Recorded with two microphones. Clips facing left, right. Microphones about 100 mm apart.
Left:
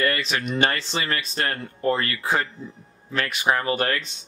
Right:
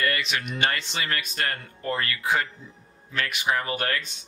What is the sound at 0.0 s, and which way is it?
Speech, 35° left (ahead or behind).